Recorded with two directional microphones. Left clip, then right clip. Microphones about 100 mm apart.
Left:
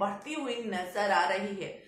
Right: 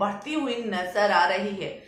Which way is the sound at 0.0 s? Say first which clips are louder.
Right 6 dB; 25° right (ahead or behind).